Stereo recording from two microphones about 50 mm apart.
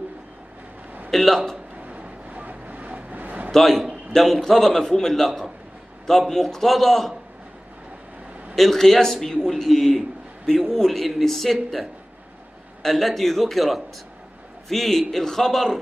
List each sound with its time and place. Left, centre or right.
1.1 s a man's voice: centre
1.9 s a sound: right
3.5 s a man's voice: centre
8.5 s a man's voice: centre